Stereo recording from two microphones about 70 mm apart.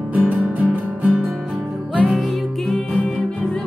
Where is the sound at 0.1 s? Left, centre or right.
Right.